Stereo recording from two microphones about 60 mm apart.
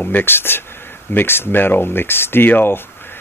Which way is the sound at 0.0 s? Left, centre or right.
Left.